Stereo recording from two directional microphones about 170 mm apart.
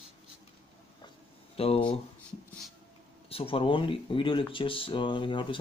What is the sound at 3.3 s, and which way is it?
Speech, 35° left (ahead or behind).